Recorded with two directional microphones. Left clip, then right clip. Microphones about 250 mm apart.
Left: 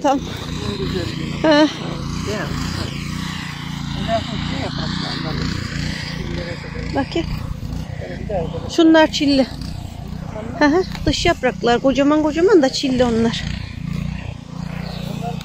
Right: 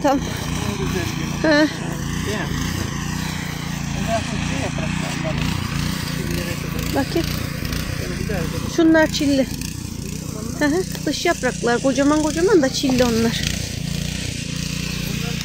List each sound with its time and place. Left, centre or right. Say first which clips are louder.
0.7 s speech: left 3 dB; centre
1.4 s speech: left 3 dB; centre
2.2 s speech: left 1 dB; centre
4.0 s speech: left 2 dB; centre; by 6.4 s right
6.9 s speech: even; centre
8.7 s speech: left 3 dB; centre
10.6 s speech: left 5 dB; centre